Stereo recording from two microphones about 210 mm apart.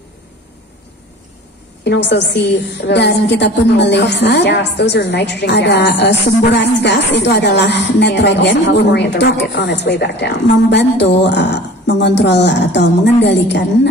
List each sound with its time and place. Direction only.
1.9 s a woman's voice: 55° left (ahead or behind)